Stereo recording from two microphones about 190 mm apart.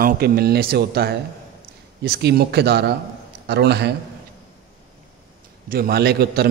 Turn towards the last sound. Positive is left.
turn(degrees=-55)  # may be behind; listen again after turning